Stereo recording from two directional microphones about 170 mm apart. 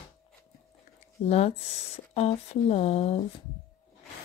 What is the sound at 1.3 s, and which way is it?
Speech, 35° left (ahead or behind).